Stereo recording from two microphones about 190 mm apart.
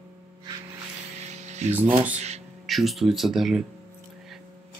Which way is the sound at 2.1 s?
35° right (ahead or behind).